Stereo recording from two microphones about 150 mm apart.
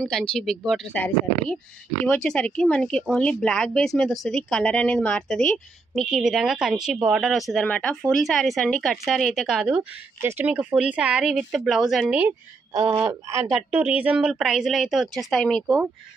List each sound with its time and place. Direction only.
0.0 s speech: 5° left (ahead or behind)
2.0 s speech: 5° left (ahead or behind)
12.2 s speech: 15° right (ahead or behind)